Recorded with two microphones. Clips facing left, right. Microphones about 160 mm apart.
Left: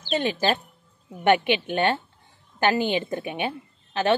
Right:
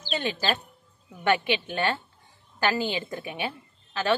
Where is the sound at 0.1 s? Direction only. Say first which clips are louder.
Left 5 dB; 20° left (ahead or behind).